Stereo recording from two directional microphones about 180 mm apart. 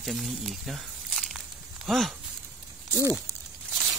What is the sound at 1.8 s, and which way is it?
Speech, centre (ahead or behind).